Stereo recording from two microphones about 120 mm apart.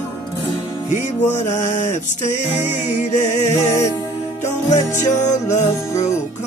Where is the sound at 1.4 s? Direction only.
90° left.